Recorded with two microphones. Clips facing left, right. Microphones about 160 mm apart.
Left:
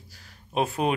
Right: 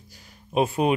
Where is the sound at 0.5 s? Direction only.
5° right (ahead or behind).